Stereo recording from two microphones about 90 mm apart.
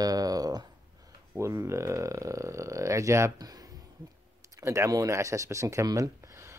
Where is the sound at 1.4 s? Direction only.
30° right (ahead or behind).